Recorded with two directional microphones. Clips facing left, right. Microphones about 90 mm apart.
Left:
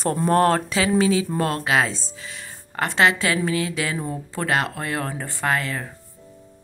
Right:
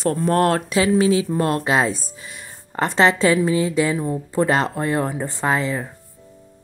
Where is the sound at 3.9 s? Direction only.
10° right (ahead or behind).